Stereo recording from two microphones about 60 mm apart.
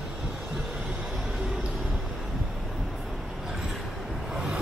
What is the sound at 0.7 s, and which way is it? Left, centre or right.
Vehicle, centre.